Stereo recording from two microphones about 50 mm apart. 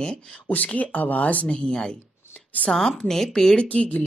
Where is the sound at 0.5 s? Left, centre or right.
Left.